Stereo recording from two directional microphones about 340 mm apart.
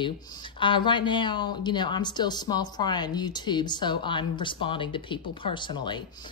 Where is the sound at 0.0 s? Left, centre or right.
Centre.